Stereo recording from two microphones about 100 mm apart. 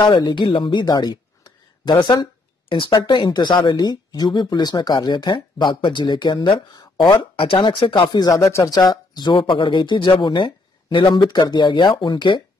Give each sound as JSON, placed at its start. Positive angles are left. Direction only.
{"t": 0.0, "sound": "a woman's voice", "side_deg": 45}
{"t": 7.3, "sound": "speech", "side_deg": 60}
{"t": 9.4, "sound": "speech", "side_deg": 55}
{"t": 11.1, "sound": "speech", "side_deg": 45}